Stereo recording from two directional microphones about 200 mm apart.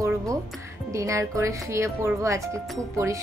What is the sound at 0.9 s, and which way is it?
Speech, 15° right (ahead or behind).